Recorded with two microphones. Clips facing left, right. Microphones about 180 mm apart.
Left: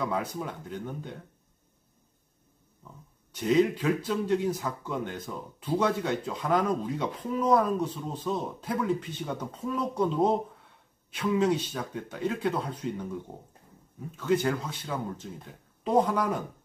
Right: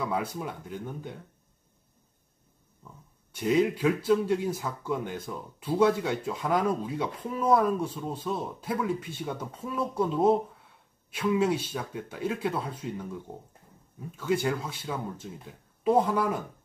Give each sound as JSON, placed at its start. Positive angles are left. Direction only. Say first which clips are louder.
{"t": 0.0, "sound": "speech", "louder": "even", "side_deg": -10}
{"t": 3.3, "sound": "speech", "louder": "left 1 dB", "side_deg": -10}
{"t": 14.2, "sound": "speech", "louder": "left 1 dB", "side_deg": -10}